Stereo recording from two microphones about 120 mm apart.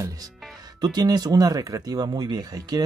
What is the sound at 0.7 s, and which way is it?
Speech, 35° right (ahead or behind).